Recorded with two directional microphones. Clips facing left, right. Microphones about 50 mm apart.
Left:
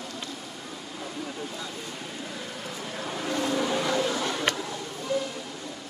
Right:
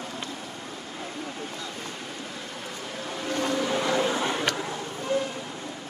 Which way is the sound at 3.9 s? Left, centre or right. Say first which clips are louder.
Right 2 dB; right.